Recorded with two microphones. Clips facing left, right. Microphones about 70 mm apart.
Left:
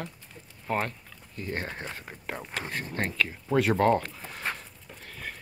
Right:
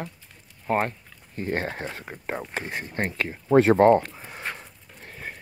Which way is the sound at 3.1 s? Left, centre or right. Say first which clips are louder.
Right 8 dB; right.